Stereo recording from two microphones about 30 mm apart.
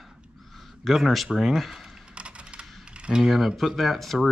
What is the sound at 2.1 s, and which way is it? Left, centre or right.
Computer keyboard, right.